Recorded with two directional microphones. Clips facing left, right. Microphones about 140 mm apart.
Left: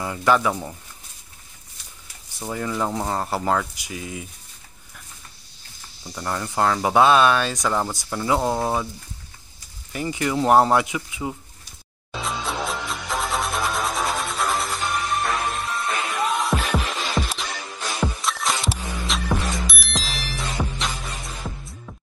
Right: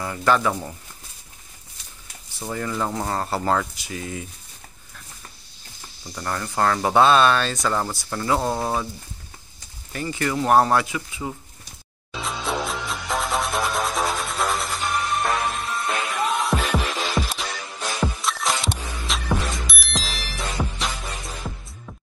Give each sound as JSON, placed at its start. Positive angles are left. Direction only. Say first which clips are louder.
{"t": 0.0, "sound": "speech", "louder": "left 1 dB", "side_deg": 10}
{"t": 2.4, "sound": "speech", "louder": "left 1 dB", "side_deg": 5}
{"t": 6.1, "sound": "speech", "louder": "left 1 dB", "side_deg": 10}
{"t": 9.9, "sound": "speech", "louder": "left 1 dB", "side_deg": 15}
{"t": 12.2, "sound": "music", "louder": "right 1 dB", "side_deg": 0}